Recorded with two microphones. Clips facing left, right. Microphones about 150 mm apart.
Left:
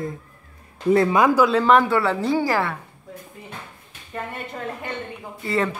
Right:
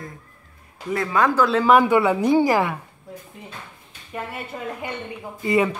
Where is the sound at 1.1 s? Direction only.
10° left (ahead or behind); by 2.7 s 15° right (ahead or behind).